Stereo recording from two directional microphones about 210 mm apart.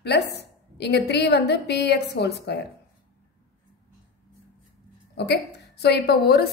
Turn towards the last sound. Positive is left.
turn(degrees=50)  # may be behind; listen again after turning